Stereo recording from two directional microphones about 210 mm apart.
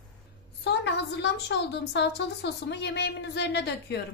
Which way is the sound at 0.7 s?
55° left (ahead or behind).